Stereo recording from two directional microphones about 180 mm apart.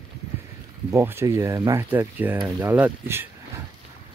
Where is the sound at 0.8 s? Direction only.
15° right (ahead or behind).